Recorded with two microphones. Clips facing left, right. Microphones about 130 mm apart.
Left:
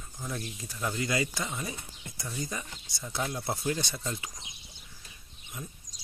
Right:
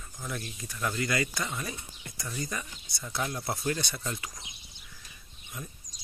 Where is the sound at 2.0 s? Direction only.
5° left (ahead or behind).